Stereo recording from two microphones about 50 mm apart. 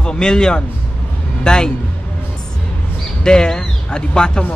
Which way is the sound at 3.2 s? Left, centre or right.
Centre.